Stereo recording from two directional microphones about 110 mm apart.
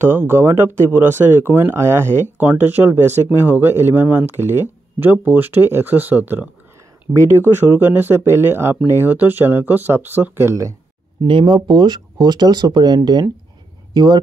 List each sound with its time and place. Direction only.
0.0 s speech: 20° right (ahead or behind)
11.2 s speech: 50° right (ahead or behind)